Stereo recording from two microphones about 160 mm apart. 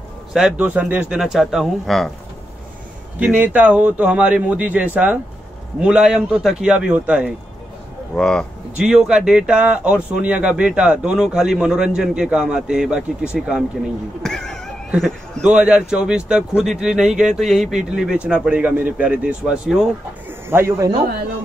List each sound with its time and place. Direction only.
0.3 s speech: 5° right (ahead or behind)
3.2 s speech: 10° right (ahead or behind)
8.2 s speech: 5° left (ahead or behind)
14.2 s a sound: 5° left (ahead or behind)
15.4 s speech: 10° right (ahead or behind)
20.4 s speech: 15° right (ahead or behind)